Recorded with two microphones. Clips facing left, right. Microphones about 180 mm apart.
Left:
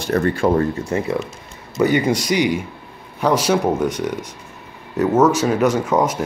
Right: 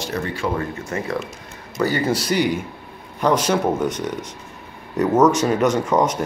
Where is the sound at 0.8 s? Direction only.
25° left (ahead or behind).